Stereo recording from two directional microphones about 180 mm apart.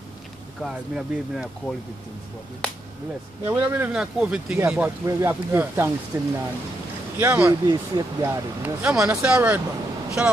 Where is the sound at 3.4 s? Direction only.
10° right (ahead or behind).